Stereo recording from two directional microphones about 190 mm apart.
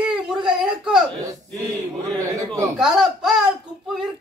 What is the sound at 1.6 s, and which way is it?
Fowl, 20° right (ahead or behind).